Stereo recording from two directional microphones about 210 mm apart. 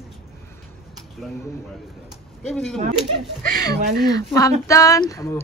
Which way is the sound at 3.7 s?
45° right (ahead or behind).